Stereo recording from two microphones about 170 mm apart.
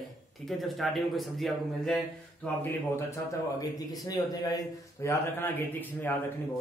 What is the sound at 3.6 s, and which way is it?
A man's voice, 20° left (ahead or behind).